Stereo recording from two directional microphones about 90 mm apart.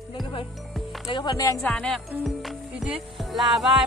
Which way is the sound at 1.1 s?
55° left (ahead or behind).